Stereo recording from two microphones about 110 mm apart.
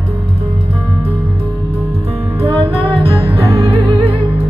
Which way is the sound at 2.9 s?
60° right (ahead or behind).